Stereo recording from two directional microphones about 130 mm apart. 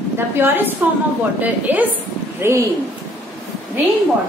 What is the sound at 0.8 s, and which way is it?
A woman's voice, 15° right (ahead or behind).